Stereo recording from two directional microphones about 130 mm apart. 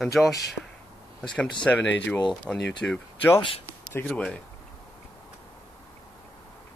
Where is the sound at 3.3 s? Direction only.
40° left (ahead or behind).